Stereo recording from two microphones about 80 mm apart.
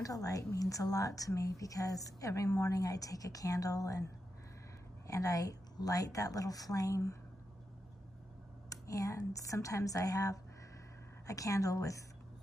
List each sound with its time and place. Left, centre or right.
0.0 s speech: left
5.0 s speech: left
8.6 s speech: left